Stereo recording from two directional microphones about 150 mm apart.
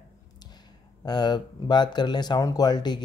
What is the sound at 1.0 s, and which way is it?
Speech, 30° left (ahead or behind).